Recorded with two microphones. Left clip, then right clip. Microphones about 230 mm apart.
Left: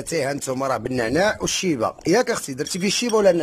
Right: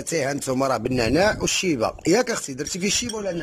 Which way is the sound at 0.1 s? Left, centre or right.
Centre.